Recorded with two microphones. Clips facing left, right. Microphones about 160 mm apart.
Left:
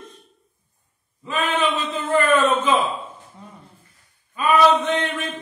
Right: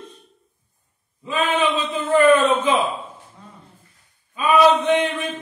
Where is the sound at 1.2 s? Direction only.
15° right (ahead or behind).